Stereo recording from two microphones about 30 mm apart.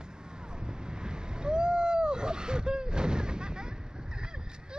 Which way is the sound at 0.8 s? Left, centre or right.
Right.